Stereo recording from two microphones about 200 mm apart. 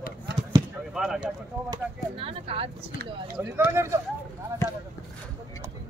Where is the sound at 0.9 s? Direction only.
Centre (ahead or behind).